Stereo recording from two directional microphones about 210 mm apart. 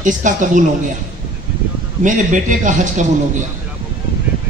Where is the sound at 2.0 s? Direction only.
35° right (ahead or behind).